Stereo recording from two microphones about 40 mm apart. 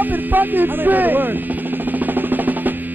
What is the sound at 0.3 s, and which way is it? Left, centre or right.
Speech, right.